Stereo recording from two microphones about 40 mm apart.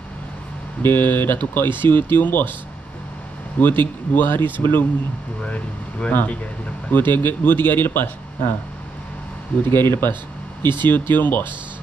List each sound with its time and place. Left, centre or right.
0.8 s speech: left
3.5 s speech: left
5.5 s speech: left
6.9 s speech: left
9.7 s speech: left
10.6 s speech: left